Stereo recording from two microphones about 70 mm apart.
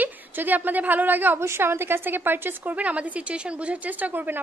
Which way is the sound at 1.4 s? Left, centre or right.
Right.